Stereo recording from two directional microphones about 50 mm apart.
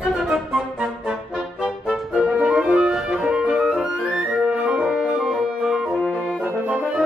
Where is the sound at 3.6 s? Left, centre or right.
Centre.